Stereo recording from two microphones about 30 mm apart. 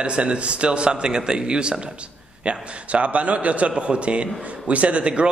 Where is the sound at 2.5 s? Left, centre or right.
Right.